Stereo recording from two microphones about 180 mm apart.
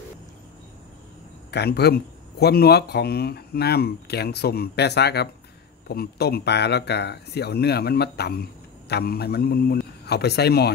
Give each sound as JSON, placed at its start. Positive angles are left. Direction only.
{"t": 1.5, "sound": "speech", "side_deg": 65}